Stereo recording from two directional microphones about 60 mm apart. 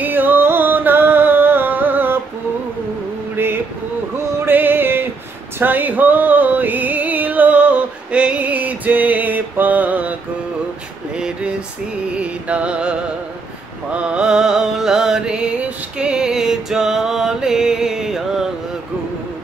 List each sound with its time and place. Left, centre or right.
0.0 s music: right
4.5 s music: right
11.1 s a sound: centre
12.2 s music: right